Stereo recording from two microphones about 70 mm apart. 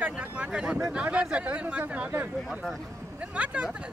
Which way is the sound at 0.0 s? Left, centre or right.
Centre.